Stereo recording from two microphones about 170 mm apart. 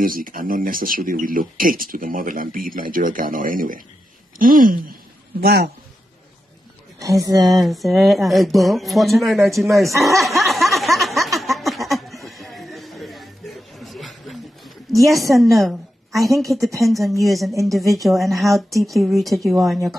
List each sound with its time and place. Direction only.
0.0 s speech: 55° right (ahead or behind)
5.4 s a man's voice: 70° right (ahead or behind)
7.0 s speech: 20° right (ahead or behind)
7.4 s speech: centre (ahead or behind)
11.3 s a sound: centre (ahead or behind)
15.3 s speech: centre (ahead or behind)